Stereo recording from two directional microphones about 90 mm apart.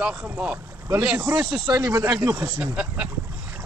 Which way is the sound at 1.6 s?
45° right (ahead or behind).